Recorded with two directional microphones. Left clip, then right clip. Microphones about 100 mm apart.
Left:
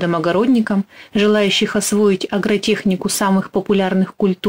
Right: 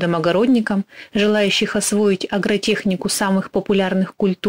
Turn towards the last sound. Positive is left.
turn(degrees=-35)  # may be behind; listen again after turning